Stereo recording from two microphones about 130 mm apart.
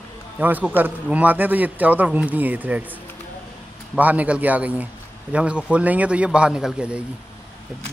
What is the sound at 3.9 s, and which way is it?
Speech, 10° right (ahead or behind).